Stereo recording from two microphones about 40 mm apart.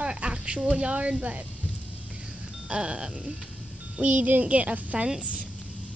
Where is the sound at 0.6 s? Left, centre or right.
Centre.